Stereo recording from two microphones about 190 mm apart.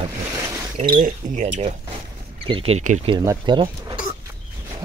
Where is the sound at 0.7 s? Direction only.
25° right (ahead or behind).